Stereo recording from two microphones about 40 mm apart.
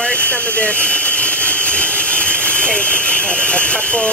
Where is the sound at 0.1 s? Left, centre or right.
Left.